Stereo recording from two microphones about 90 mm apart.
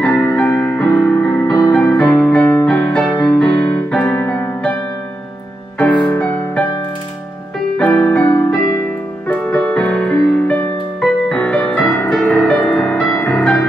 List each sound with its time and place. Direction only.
0.0 s music: 15° left (ahead or behind)
1.0 s music: 40° left (ahead or behind)
2.0 s music: 20° left (ahead or behind)
5.8 s music: 15° left (ahead or behind)
7.7 s music: 15° left (ahead or behind)
9.4 s music: 10° left (ahead or behind)